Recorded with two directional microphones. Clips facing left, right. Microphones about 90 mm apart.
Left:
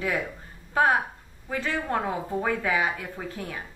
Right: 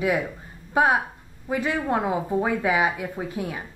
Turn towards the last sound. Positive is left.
turn(degrees=-15)  # may be behind; listen again after turning